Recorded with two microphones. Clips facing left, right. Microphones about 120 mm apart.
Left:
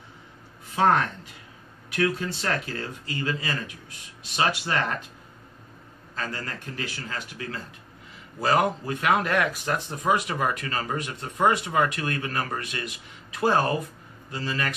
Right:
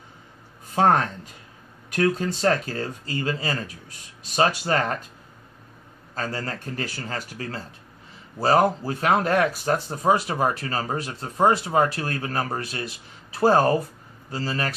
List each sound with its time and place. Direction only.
1.9 s speech: 40° right (ahead or behind)
6.1 s speech: 35° right (ahead or behind)